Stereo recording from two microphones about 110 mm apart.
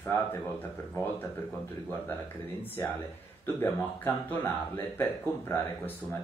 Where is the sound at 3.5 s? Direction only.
20° left (ahead or behind).